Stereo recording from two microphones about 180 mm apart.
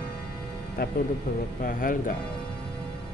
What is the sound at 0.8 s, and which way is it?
Speech, 55° left (ahead or behind).